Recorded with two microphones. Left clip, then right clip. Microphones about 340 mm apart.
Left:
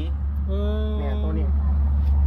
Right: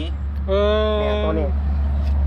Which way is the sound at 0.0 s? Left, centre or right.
Right.